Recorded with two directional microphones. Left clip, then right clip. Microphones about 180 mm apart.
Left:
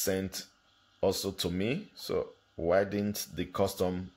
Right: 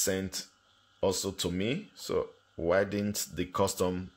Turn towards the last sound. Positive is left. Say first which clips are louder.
# right 1 dB
turn(degrees=-10)  # may be behind; listen again after turning